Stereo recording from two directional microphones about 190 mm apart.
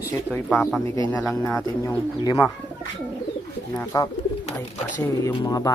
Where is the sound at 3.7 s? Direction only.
20° left (ahead or behind).